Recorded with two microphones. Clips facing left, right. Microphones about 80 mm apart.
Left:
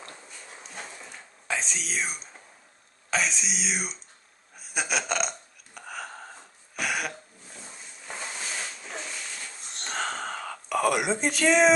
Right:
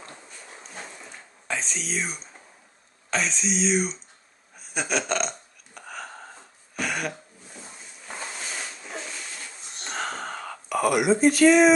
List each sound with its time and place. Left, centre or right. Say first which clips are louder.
0.1 s dog: right 1 dB; centre
3.1 s speech: right 2 dB; centre
5.8 s a sound: even; centre